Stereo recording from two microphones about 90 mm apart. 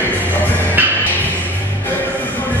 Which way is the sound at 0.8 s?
20° right (ahead or behind).